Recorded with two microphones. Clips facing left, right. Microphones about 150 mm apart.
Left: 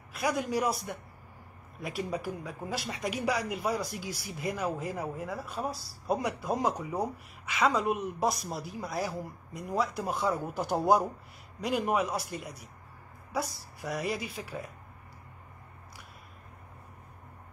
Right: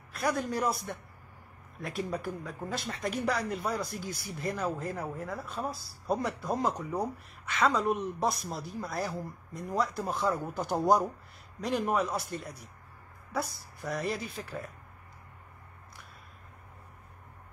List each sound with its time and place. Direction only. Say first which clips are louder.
0.2 s speech: left 1 dB; 5° left (ahead or behind)
3.5 s speech: left 1 dB; 55° right (ahead or behind)
4.3 s speech: even; 10° left (ahead or behind)